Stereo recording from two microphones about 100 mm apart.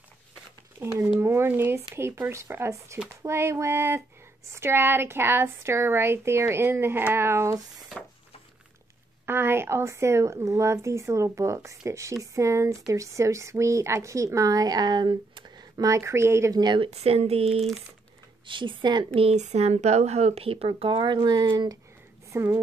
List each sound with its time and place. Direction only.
0.8 s a woman's voice: 25° right (ahead or behind)
7.9 s a sound: 5° right (ahead or behind)
9.2 s a woman's voice: 25° right (ahead or behind); by 16.0 s 40° right (ahead or behind)
16.0 s a woman's voice: 25° right (ahead or behind)
16.5 s a woman's voice: 50° right (ahead or behind)
16.9 s speech: 90° right
18.5 s a woman's voice: 55° right (ahead or behind)
19.1 s speech: 80° right; by 21.7 s 45° right (ahead or behind)
22.3 s speech: 30° right (ahead or behind)